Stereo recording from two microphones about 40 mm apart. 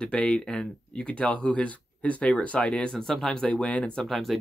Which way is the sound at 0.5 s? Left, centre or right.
Centre.